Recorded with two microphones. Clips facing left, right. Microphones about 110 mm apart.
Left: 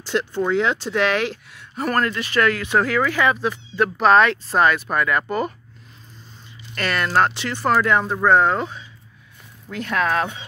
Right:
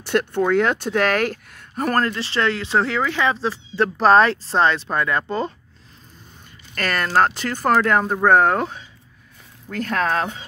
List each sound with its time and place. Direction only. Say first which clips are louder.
0.0 s speech: right 2 dB; 60° right (ahead or behind); by 5.5 s 25° right (ahead or behind)
6.7 s speech: even; 40° right (ahead or behind)